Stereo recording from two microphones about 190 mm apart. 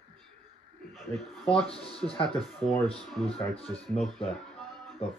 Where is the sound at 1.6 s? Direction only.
30° left (ahead or behind).